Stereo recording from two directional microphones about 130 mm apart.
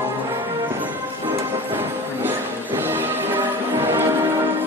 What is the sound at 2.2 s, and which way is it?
Music, 15° right (ahead or behind).